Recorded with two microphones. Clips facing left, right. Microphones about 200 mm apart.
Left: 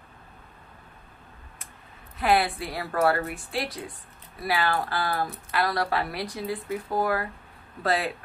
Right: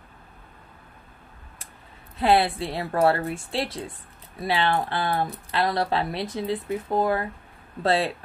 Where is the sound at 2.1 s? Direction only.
25° right (ahead or behind).